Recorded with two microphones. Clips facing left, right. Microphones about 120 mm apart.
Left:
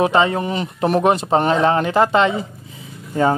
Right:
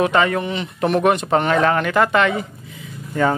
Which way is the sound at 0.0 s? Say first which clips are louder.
Left 1 dB; 25° left (ahead or behind).